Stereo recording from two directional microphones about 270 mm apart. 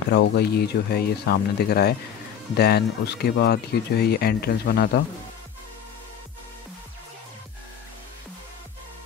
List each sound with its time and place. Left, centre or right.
0.1 s speech: left